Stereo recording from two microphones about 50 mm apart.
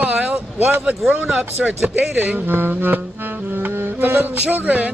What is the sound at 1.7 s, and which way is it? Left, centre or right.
Speech, right.